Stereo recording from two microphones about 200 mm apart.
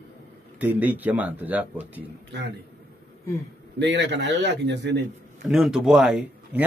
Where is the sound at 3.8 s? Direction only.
60° right (ahead or behind).